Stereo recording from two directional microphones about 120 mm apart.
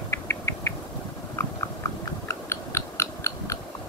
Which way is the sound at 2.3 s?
20° left (ahead or behind).